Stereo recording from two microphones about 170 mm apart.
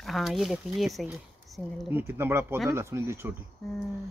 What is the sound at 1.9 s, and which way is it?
Speech, 15° right (ahead or behind).